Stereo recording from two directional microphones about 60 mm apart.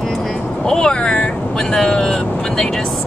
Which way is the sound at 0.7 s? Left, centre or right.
Centre.